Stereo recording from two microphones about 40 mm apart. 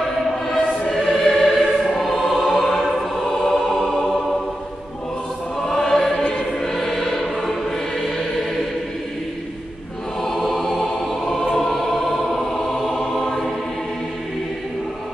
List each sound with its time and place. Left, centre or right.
0.5 s choir: centre
5.6 s choir: centre
6.1 s music: left
6.6 s music: centre
10.2 s music: centre
11.5 s choir: centre
12.9 s music: centre